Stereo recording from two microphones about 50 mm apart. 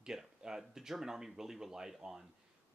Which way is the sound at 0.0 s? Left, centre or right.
Centre.